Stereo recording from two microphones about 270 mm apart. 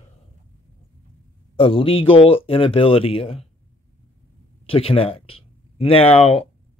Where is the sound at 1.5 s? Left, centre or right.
Centre.